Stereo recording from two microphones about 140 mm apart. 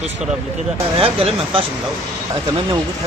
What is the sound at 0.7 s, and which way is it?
Speech, 40° right (ahead or behind).